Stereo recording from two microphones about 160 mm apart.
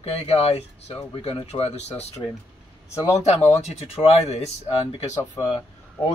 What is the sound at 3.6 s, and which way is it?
Speech, 40° left (ahead or behind).